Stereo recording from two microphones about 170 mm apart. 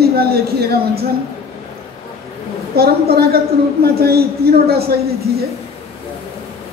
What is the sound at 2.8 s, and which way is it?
A woman's voice, 65° right (ahead or behind).